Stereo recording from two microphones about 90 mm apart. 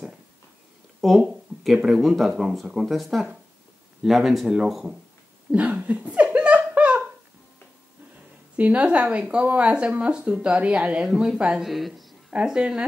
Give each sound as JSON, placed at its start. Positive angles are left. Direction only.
{"t": 1.0, "sound": "speech", "side_deg": 0}
{"t": 5.5, "sound": "laughter", "side_deg": -15}
{"t": 8.5, "sound": "speech", "side_deg": -15}